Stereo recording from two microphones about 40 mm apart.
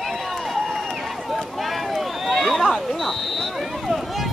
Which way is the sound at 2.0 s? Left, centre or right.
Centre.